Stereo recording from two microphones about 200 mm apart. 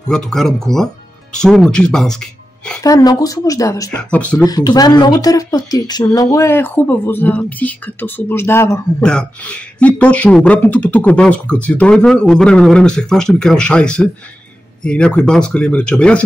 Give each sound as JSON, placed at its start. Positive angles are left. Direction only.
{"t": 0.1, "sound": "a woman's voice", "side_deg": 5}
{"t": 2.8, "sound": "a woman's voice", "side_deg": 20}
{"t": 3.9, "sound": "a woman's voice", "side_deg": 5}
{"t": 4.5, "sound": "speech", "side_deg": 20}